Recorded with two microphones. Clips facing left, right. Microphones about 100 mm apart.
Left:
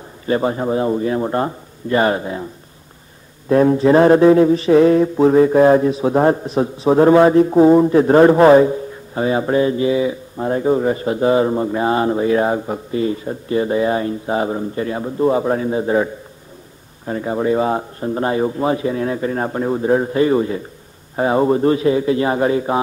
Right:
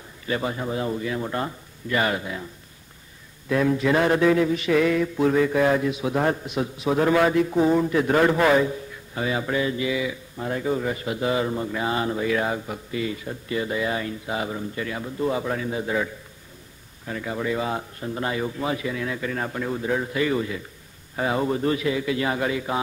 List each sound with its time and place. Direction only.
0.3 s mantra: 35° left (ahead or behind)
3.4 s mantra: 35° left (ahead or behind)